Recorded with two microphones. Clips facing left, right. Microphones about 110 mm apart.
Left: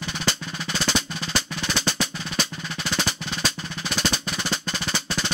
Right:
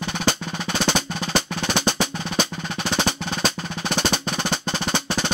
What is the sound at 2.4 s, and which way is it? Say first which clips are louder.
Percussion: right 4 dB; 25° right (ahead or behind).